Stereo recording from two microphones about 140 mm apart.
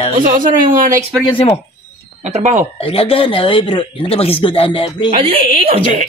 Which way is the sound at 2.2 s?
55° right (ahead or behind).